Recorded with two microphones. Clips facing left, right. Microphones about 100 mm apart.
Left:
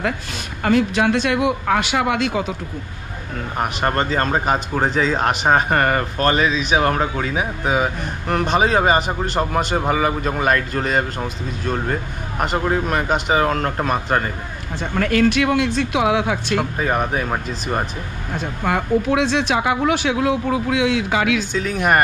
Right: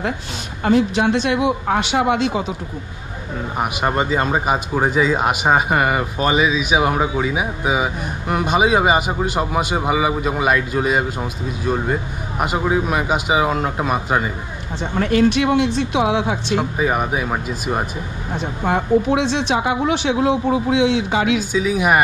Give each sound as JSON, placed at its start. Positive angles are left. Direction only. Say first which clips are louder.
{"t": 0.7, "sound": "a man's voice", "louder": "right 1 dB", "side_deg": -20}
{"t": 3.5, "sound": "speech", "louder": "even", "side_deg": -10}
{"t": 15.0, "sound": "a man's voice", "louder": "right 1 dB", "side_deg": -20}
{"t": 16.7, "sound": "speech", "louder": "right 1 dB", "side_deg": -5}
{"t": 19.0, "sound": "a man's voice", "louder": "even", "side_deg": -25}
{"t": 21.5, "sound": "speech", "louder": "right 2 dB", "side_deg": -5}